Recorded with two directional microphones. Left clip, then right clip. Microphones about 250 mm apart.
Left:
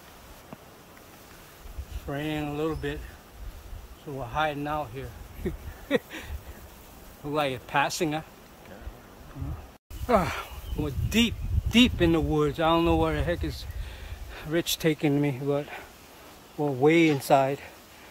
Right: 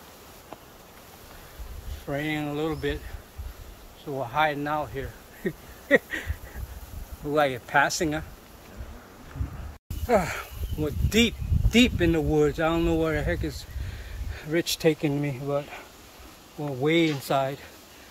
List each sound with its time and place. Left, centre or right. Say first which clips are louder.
2.0 s speech: right 2 dB; centre
4.2 s speech: right 3 dB; centre
7.3 s speech: right 4 dB; centre
10.0 s speech: right 1 dB; centre